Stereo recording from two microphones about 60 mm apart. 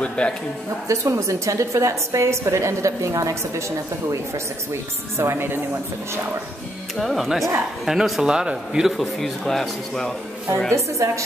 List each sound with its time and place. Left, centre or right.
0.0 s speech: centre
0.8 s a woman's voice: right
5.1 s a woman's voice: right
7.0 s speech: centre
9.0 s a man's voice: centre
10.7 s a woman's voice: right